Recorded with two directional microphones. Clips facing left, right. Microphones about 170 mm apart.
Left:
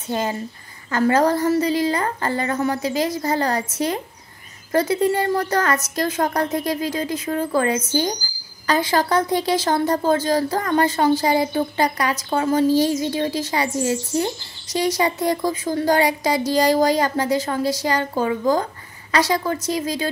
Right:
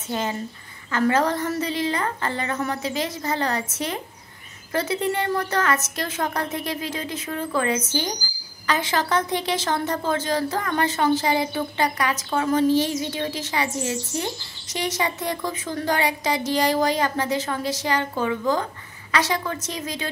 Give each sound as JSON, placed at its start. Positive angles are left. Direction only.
{"t": 0.1, "sound": "a woman's voice", "side_deg": 35}